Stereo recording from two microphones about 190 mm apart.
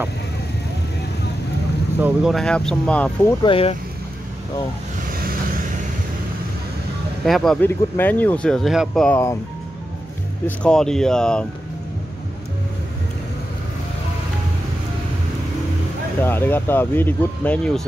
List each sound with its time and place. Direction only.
2.0 s speech: 5° right (ahead or behind)
3.4 s speech: 30° left (ahead or behind)
7.2 s speech: centre (ahead or behind)
10.4 s speech: 5° left (ahead or behind)
16.2 s speech: 10° left (ahead or behind)